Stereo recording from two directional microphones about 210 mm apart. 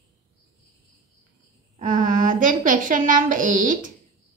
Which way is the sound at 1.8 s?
40° right (ahead or behind).